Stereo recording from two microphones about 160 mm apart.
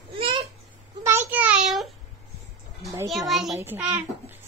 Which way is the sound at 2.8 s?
20° right (ahead or behind).